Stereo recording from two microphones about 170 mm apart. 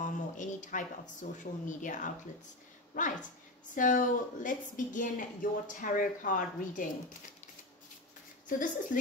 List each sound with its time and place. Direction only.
0.0 s a sound: 45° left (ahead or behind)
1.4 s a woman's voice: 50° left (ahead or behind)
8.5 s speech: 50° left (ahead or behind)